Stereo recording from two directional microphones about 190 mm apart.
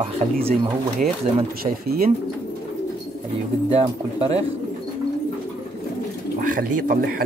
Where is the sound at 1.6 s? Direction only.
50° right (ahead or behind).